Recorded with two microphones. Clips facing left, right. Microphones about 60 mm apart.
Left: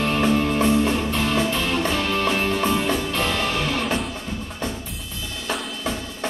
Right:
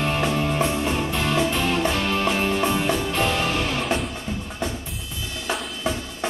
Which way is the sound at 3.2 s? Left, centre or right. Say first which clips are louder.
Even; centre.